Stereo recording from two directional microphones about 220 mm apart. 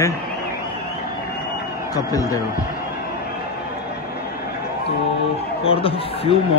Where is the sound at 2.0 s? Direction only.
15° left (ahead or behind).